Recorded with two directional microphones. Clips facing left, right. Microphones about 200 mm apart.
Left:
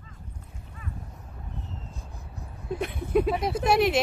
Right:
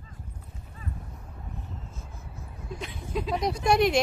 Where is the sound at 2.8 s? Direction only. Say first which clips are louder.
Left 9 dB; 60° left (ahead or behind).